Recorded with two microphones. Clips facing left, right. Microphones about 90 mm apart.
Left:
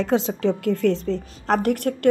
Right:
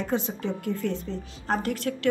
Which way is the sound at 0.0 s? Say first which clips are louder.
Left 8 dB; 85° left.